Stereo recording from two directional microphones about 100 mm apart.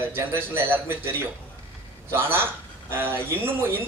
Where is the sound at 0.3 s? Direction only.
20° right (ahead or behind).